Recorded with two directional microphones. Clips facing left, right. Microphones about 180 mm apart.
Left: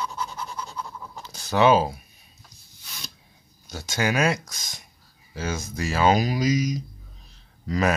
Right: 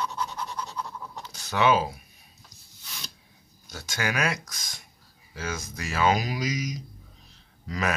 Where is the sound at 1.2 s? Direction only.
35° left (ahead or behind).